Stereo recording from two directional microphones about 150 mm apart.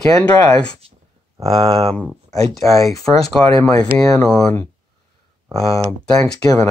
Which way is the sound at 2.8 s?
Centre (ahead or behind).